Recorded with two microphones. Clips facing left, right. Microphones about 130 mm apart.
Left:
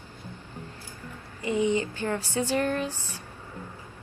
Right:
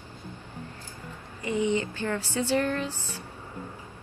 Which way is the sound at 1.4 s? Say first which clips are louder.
Left 1 dB; 15° left (ahead or behind).